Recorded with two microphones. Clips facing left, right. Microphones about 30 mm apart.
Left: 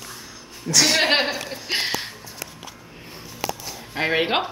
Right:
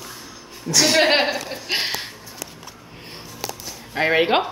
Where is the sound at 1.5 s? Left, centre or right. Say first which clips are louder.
Right 1 dB; centre.